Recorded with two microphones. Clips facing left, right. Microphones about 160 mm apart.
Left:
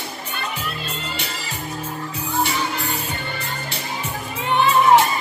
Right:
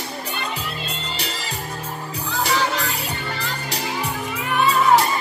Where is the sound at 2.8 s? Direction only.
90° right.